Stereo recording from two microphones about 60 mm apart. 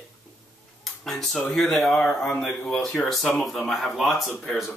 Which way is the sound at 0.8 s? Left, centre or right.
Centre.